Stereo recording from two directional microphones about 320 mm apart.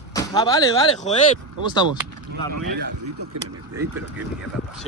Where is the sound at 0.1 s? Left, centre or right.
Centre.